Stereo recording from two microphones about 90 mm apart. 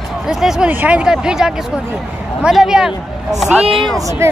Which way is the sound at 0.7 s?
15° right (ahead or behind).